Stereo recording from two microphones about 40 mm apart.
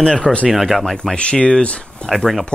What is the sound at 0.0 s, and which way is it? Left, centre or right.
Speech, left.